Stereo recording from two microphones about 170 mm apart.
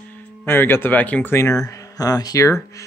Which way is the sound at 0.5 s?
15° left (ahead or behind).